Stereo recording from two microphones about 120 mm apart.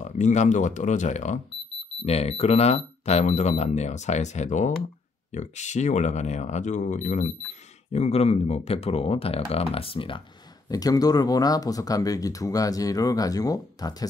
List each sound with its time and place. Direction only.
0.0 s speech: 75° left (ahead or behind)
2.0 s speech: 60° left (ahead or behind); by 7.3 s 80° left
7.9 s speech: 60° left (ahead or behind); by 10.2 s 45° left (ahead or behind)
10.7 s speech: 30° left (ahead or behind)